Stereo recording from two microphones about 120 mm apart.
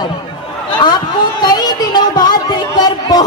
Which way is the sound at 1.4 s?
35° left (ahead or behind).